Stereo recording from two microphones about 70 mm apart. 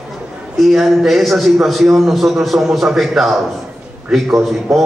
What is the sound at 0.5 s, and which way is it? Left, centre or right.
A man's voice, centre.